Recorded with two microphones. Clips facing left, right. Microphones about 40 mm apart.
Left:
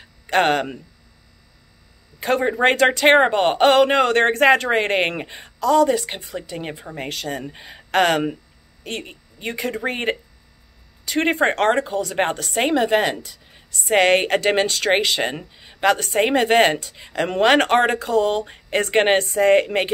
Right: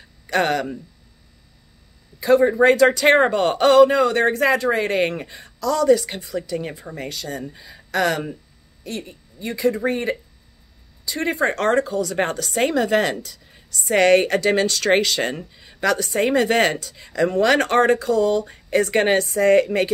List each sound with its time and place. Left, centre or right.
0.3 s speech: left
2.1 s speech: left
13.8 s speech: left